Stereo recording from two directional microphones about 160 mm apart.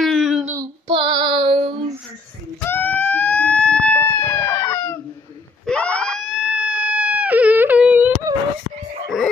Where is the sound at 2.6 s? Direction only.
10° left (ahead or behind); by 8.3 s 10° right (ahead or behind).